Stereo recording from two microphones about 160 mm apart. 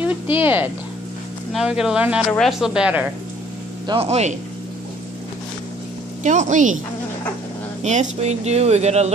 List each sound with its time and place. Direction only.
0.0 s speech: 10° right (ahead or behind)
3.8 s speech: 35° right (ahead or behind)
6.2 s speech: 50° right (ahead or behind)
7.8 s speech: 45° right (ahead or behind)